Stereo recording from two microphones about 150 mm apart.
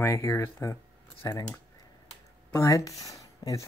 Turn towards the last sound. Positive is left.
turn(degrees=25)  # may be behind; listen again after turning